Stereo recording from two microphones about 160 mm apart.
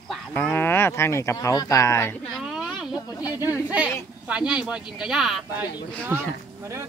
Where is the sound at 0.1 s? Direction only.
10° left (ahead or behind).